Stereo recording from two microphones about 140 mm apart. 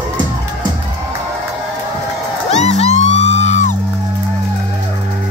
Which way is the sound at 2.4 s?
50° left (ahead or behind).